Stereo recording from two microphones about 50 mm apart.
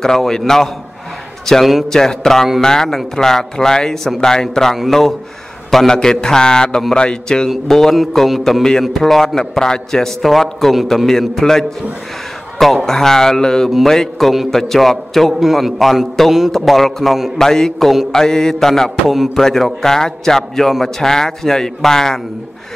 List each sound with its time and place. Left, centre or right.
0.0 s a man's voice: centre
7.4 s a man's voice: centre
11.1 s a man's voice: centre
17.4 s a man's voice: centre